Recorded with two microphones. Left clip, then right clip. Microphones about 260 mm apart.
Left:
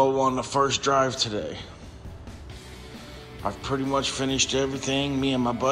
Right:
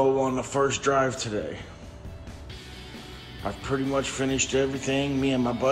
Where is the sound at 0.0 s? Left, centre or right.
Left.